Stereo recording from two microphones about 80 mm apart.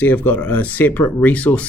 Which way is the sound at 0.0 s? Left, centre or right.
Left.